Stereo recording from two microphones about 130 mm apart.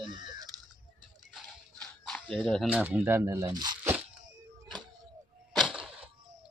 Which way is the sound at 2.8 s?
15° right (ahead or behind).